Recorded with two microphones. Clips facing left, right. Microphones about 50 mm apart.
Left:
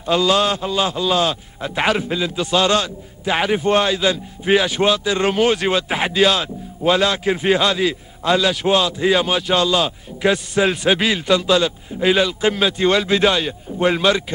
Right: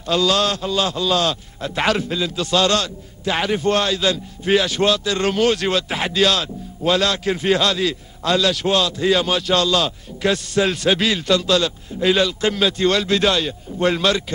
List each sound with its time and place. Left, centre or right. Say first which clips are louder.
0.0 s a man's voice: left 2 dB; centre